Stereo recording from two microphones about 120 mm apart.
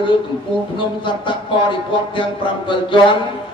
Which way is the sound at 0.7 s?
40° left (ahead or behind).